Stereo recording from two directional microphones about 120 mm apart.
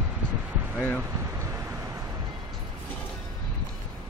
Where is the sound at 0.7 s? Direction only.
10° left (ahead or behind).